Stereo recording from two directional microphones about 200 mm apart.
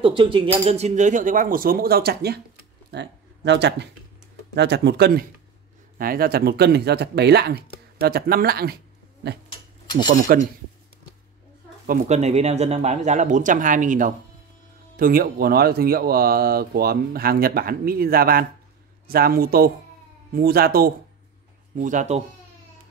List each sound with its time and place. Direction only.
0.0 s speech: 25° right (ahead or behind); by 8.7 s 50° right (ahead or behind)
9.5 s a sound: 20° left (ahead or behind)
10.1 s speech: 40° right (ahead or behind)
11.8 s speech: 40° right (ahead or behind)